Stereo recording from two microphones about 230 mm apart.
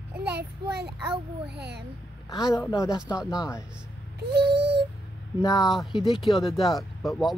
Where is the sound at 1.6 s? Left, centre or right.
Right.